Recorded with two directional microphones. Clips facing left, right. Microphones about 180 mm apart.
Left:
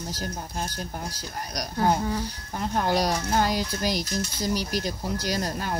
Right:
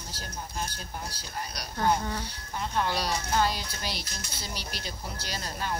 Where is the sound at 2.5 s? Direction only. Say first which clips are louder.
Left 5 dB; 45° left (ahead or behind).